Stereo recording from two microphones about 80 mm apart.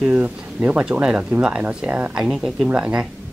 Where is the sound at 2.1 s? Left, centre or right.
Centre.